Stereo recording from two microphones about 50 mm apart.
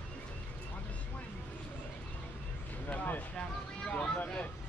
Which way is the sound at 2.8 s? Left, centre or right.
Left.